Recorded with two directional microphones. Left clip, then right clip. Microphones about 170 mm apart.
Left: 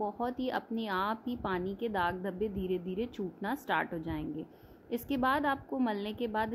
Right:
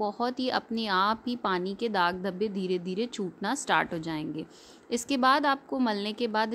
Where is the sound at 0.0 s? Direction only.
15° right (ahead or behind).